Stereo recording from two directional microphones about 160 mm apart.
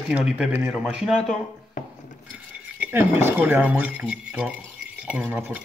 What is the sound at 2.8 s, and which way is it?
A man's voice, 15° right (ahead or behind).